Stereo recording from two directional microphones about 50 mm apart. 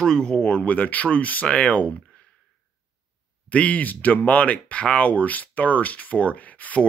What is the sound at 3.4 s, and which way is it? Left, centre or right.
Speech, left.